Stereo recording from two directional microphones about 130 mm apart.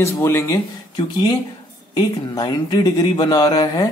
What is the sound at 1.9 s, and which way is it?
Speech, 35° left (ahead or behind).